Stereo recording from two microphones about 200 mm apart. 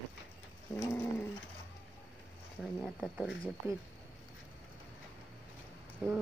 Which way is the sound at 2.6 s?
Centre (ahead or behind).